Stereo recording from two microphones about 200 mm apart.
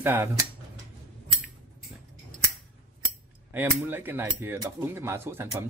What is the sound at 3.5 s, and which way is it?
Cutlery, 10° right (ahead or behind).